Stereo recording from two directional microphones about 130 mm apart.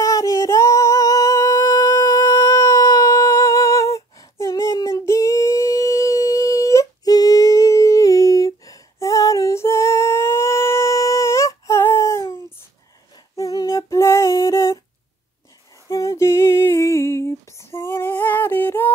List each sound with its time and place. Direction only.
0.0 s singing: 25° left (ahead or behind)
13.1 s female singing: 30° left (ahead or behind)
15.9 s female singing: 25° left (ahead or behind)